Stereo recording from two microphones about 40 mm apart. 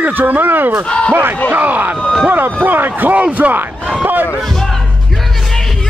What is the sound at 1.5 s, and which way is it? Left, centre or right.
Speech, right.